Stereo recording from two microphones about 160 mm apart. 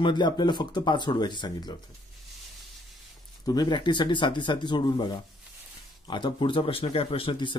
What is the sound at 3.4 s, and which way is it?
Speech, 25° left (ahead or behind).